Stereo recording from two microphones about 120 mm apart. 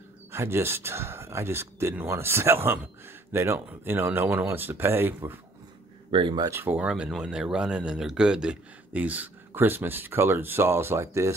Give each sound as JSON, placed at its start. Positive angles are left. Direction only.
{"t": 0.3, "sound": "speech", "side_deg": -20}
{"t": 6.1, "sound": "speech", "side_deg": -45}
{"t": 6.4, "sound": "speech", "side_deg": -20}